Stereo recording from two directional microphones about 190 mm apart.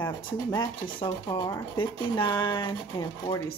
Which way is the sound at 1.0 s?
20° left (ahead or behind).